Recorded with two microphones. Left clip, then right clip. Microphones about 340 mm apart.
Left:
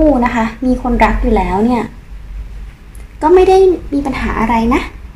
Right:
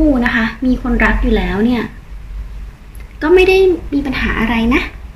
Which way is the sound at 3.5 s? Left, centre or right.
Centre.